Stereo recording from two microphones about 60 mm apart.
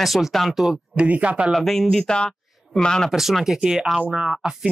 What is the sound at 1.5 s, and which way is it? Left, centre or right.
Speech, centre.